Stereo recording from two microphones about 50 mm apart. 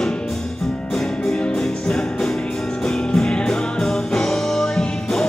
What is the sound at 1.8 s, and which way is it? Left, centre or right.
Music, centre.